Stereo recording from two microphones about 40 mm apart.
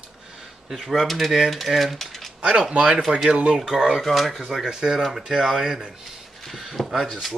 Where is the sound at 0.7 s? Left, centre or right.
Centre.